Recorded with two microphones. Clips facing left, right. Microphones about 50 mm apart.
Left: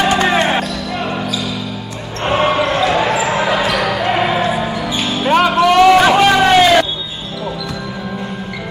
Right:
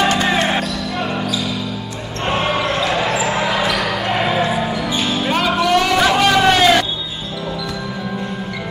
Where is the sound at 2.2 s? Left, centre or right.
Centre.